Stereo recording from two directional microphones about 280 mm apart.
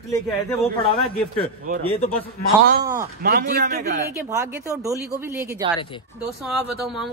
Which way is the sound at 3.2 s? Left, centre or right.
Right.